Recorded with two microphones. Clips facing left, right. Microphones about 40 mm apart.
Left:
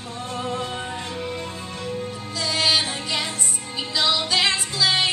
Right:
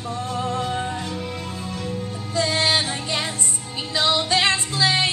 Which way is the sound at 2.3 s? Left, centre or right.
Right.